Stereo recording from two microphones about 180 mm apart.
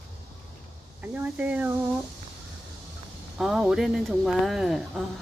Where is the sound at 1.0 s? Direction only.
10° right (ahead or behind).